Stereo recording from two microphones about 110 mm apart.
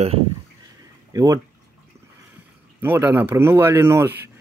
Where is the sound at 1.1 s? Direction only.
30° right (ahead or behind).